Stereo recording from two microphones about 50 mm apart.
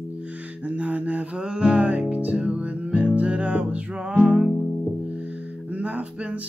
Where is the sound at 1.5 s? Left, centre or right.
Centre.